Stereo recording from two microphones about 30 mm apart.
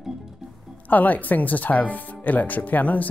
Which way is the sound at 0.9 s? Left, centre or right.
Left.